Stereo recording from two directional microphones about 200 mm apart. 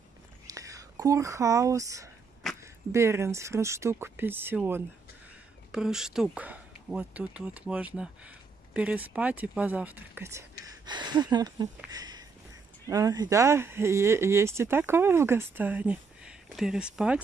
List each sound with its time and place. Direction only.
0.5 s speech: 15° right (ahead or behind)
10.6 s a sound: 20° right (ahead or behind)
12.8 s speech: 15° right (ahead or behind)